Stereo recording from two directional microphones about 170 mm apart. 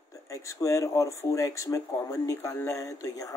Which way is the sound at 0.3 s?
20° left (ahead or behind).